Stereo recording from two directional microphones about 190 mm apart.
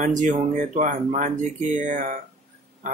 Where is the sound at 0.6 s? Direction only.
40° right (ahead or behind).